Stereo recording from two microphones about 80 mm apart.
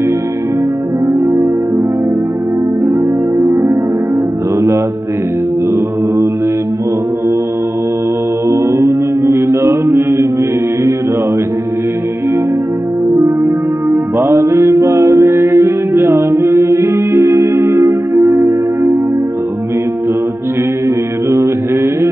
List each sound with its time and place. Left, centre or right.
1.0 s music: right
2.9 s music: right
8.5 s mantra: right
13.2 s music: right